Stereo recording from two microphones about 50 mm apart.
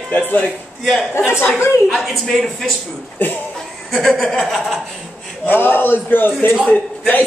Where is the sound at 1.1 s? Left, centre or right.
Left.